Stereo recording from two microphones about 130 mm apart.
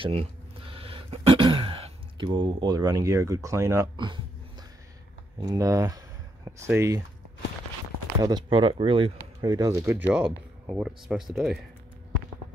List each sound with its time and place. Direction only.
0.0 s a sound: 45° right (ahead or behind); by 3.9 s 25° right (ahead or behind)
3.9 s speech: 35° right (ahead or behind)
5.4 s speech: 30° right (ahead or behind)
8.2 s speech: 30° right (ahead or behind)
9.4 s speech: 30° right (ahead or behind); by 11.6 s centre (ahead or behind)